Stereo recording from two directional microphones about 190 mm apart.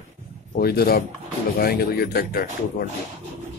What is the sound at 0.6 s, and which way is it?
Speech, 55° left (ahead or behind).